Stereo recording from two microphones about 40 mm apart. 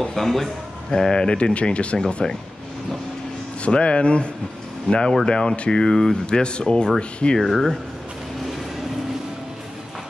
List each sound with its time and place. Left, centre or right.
0.0 s a man's voice: centre; by 2.2 s left
3.6 s speech: left; by 6.1 s centre
6.2 s speech: left
7.3 s a man's voice: centre